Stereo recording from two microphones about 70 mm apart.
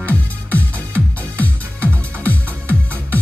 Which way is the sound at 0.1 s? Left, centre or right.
Left.